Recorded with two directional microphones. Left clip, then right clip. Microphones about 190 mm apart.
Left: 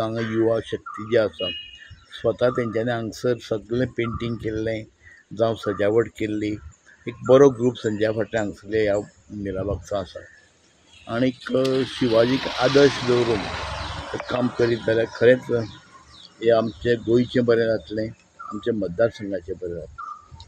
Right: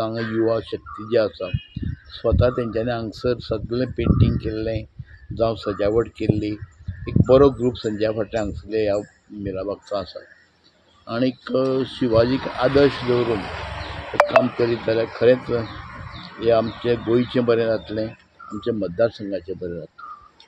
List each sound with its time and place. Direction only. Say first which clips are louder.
0.4 s speech: even; centre (ahead or behind)
13.0 s speech: even; 50° left (ahead or behind)
14.2 s speech: right 6 dB; 5° left (ahead or behind)